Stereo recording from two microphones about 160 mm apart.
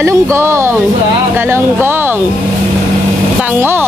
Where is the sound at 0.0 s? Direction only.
15° right (ahead or behind).